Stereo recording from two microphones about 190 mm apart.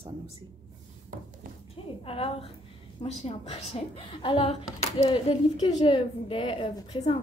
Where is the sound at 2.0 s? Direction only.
30° left (ahead or behind).